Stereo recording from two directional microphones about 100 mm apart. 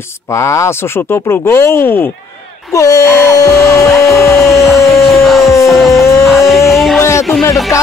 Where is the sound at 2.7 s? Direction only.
35° left (ahead or behind).